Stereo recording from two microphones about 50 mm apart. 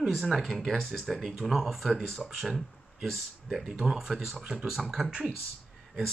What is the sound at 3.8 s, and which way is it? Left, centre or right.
Speech, centre.